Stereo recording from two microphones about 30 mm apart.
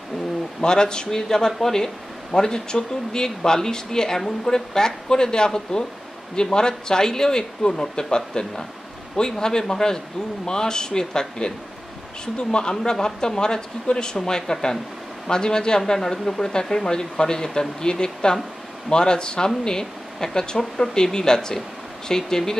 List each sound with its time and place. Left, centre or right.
0.6 s speech: left
1.1 s speech: centre